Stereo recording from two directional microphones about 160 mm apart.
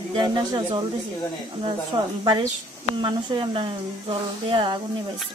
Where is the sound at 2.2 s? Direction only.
25° right (ahead or behind).